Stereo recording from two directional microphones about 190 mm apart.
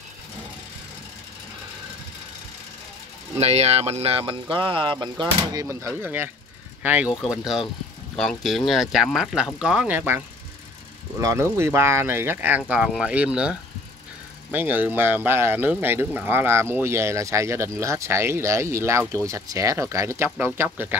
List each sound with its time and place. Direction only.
3.3 s speech: 35° right (ahead or behind); by 20.9 s 10° right (ahead or behind)